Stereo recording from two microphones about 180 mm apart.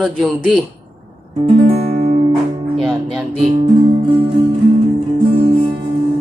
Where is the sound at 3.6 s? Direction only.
30° right (ahead or behind).